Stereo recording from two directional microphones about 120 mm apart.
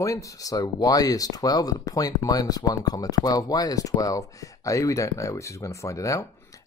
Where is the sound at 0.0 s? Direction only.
25° left (ahead or behind).